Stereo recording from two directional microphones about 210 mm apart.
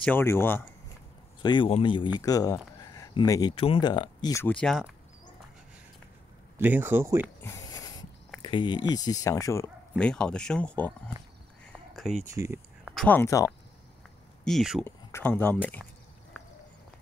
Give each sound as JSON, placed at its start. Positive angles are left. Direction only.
{"t": 0.0, "sound": "speech", "side_deg": 10}
{"t": 1.4, "sound": "speech", "side_deg": 20}
{"t": 6.6, "sound": "speech", "side_deg": -10}
{"t": 7.4, "sound": "a sound", "side_deg": 15}
{"t": 8.4, "sound": "speech", "side_deg": 20}
{"t": 11.6, "sound": "a sound", "side_deg": 0}
{"t": 12.3, "sound": "speech", "side_deg": -15}
{"t": 12.9, "sound": "speech", "side_deg": 5}
{"t": 14.4, "sound": "speech", "side_deg": 0}
{"t": 14.9, "sound": "speech", "side_deg": 10}